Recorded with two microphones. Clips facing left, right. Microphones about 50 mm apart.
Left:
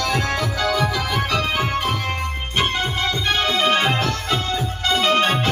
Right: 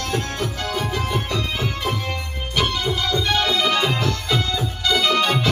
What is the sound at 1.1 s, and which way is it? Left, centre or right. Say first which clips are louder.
Music: left 3 dB; left.